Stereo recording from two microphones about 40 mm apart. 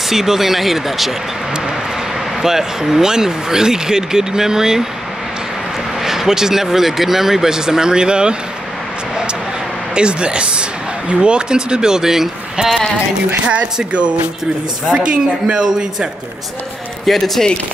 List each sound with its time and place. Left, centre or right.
0.1 s speech: centre
2.4 s speech: centre
5.9 s speech: centre
9.9 s speech: right
13.9 s speech: right
17.0 s speech: centre